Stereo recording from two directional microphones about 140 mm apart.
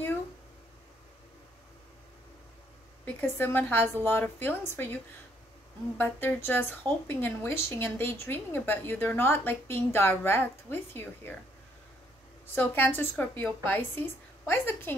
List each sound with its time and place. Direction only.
3.2 s a woman's voice: 15° left (ahead or behind)
5.9 s a woman's voice: 15° left (ahead or behind)
12.5 s a woman's voice: 15° left (ahead or behind)